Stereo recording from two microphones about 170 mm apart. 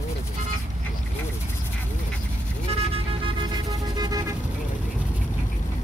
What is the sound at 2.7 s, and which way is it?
Vehicle, 35° right (ahead or behind).